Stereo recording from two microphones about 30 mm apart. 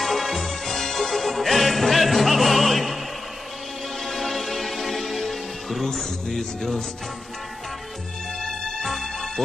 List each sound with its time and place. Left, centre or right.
0.0 s music: centre
4.0 s music: centre
6.2 s speech: centre
8.4 s music: centre
8.8 s music: centre